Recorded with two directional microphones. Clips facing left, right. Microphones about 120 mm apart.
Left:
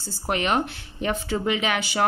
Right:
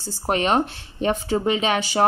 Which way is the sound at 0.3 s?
35° right (ahead or behind).